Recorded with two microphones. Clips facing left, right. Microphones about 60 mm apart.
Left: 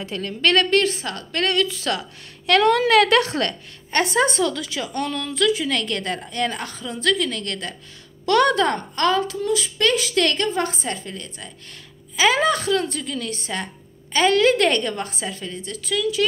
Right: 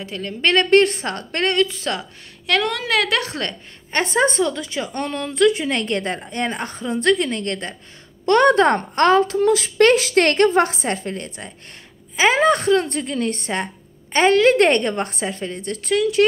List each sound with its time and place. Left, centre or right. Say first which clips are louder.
0.0 s a woman's voice: even; centre
0.4 s a woman's voice: right 1 dB; centre
0.7 s a woman's voice: right 5 dB; right
1.0 s a woman's voice: right 2 dB; right
1.4 s a woman's voice: right 2 dB; right
2.4 s a woman's voice: left 5 dB; centre
4.6 s a woman's voice: right 1 dB; right
6.6 s a woman's voice: right 4 dB; right
10.9 s a woman's voice: right 5 dB; right
14.1 s a woman's voice: right 3 dB; right
15.2 s a woman's voice: right 5 dB; right